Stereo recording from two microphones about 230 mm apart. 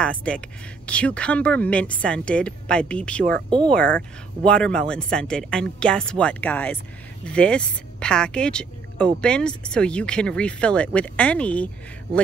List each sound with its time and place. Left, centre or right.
0.0 s speech: centre
3.4 s speech: right
4.5 s speech: centre